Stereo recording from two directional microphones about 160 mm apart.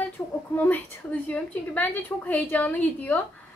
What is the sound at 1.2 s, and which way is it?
A woman's voice, 10° left (ahead or behind).